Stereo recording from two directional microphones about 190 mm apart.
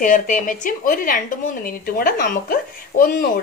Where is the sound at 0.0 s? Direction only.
45° left (ahead or behind).